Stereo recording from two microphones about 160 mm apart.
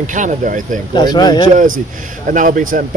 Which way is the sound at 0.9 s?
25° left (ahead or behind).